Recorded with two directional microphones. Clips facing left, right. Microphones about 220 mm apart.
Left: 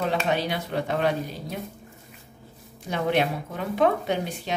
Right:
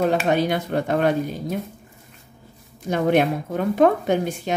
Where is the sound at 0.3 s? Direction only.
50° right (ahead or behind).